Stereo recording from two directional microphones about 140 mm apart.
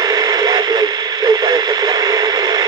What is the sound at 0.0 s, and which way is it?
Radio, 30° right (ahead or behind).